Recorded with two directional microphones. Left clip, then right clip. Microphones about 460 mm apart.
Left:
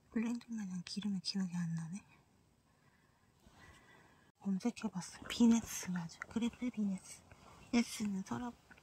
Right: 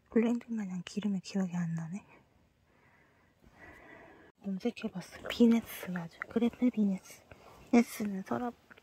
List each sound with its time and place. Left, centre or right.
0.1 s speech: centre
4.6 s speech: centre